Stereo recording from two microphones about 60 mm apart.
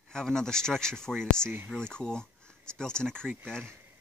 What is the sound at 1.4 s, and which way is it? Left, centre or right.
Speech, right.